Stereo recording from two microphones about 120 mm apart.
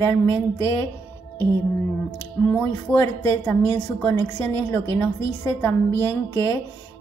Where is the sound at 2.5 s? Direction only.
10° left (ahead or behind).